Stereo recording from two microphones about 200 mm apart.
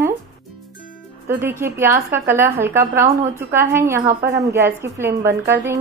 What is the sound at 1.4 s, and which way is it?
Speech, 10° right (ahead or behind).